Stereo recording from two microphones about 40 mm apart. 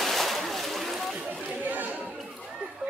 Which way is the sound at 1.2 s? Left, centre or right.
Right.